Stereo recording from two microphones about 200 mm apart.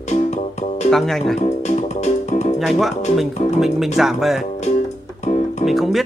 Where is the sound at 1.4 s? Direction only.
35° left (ahead or behind).